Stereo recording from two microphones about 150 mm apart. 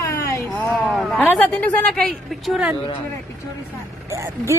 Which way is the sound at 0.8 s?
Centre (ahead or behind).